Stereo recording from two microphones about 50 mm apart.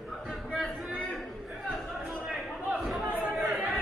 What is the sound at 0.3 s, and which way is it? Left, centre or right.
Chatter, centre.